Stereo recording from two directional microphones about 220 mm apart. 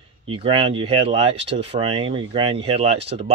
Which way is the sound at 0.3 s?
25° right (ahead or behind).